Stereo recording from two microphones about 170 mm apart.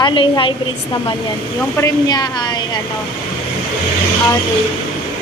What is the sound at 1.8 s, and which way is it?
Speech, 25° left (ahead or behind).